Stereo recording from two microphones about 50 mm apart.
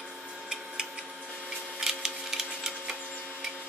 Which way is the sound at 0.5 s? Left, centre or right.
Centre.